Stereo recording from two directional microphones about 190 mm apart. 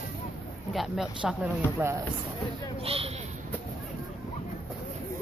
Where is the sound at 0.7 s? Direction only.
5° right (ahead or behind).